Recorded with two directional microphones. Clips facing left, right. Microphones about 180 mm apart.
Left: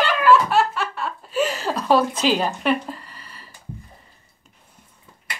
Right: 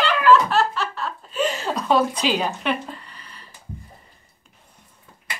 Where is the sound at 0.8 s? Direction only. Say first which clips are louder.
Left 1 dB; 5° left (ahead or behind).